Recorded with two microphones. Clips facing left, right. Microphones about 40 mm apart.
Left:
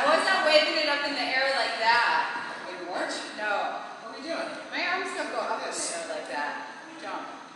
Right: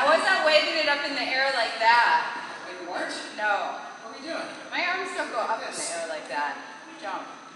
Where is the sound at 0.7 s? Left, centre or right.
Right.